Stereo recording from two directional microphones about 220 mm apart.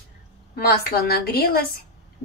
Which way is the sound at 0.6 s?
45° left (ahead or behind).